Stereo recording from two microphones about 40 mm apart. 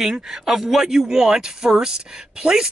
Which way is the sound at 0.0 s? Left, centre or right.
Centre.